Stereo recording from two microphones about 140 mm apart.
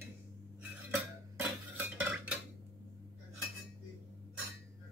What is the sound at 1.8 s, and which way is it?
Cutlery, 10° right (ahead or behind).